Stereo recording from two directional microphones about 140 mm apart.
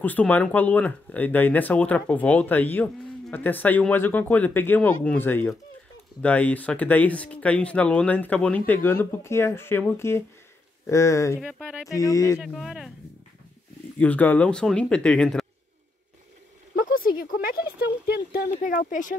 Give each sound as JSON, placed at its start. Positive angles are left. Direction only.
{"t": 0.0, "sound": "speech", "side_deg": 10}
{"t": 11.4, "sound": "speech", "side_deg": -5}
{"t": 11.9, "sound": "speech", "side_deg": 25}
{"t": 12.4, "sound": "speech", "side_deg": 0}
{"t": 13.9, "sound": "speech", "side_deg": 10}
{"t": 16.7, "sound": "a sound", "side_deg": 90}
{"t": 17.2, "sound": "speech", "side_deg": 90}
{"t": 18.6, "sound": "speech", "side_deg": 70}